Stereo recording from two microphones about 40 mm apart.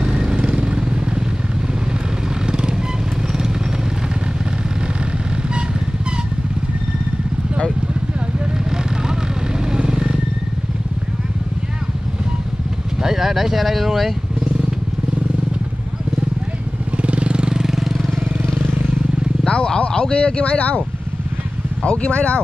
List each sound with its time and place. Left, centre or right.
0.0 s vehicle: right
2.4 s vehicle: right
9.7 s vehicle: centre
13.0 s speech: centre
16.9 s vehicle: right; by 18.1 s centre
19.4 s a sound: left
21.8 s speech: left